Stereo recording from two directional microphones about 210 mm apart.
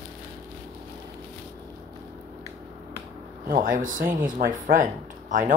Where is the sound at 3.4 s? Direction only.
40° right (ahead or behind).